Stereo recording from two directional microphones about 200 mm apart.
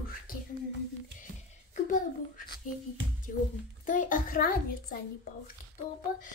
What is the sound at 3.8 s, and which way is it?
A child's voice, 40° left (ahead or behind).